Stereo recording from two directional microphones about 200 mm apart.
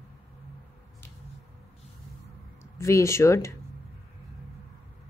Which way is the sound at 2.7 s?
15° left (ahead or behind).